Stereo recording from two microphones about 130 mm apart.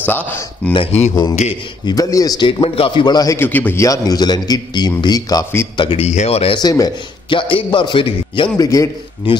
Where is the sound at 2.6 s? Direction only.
45° left (ahead or behind).